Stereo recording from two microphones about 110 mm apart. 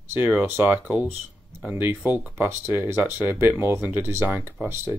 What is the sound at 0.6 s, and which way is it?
Speech, 10° right (ahead or behind).